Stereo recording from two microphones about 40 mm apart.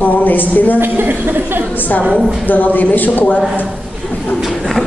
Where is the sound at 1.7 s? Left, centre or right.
Left.